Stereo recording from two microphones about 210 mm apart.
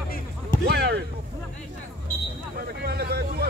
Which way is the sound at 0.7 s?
50° right (ahead or behind).